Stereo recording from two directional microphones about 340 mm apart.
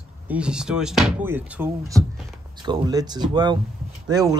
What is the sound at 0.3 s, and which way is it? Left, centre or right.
Speech, centre.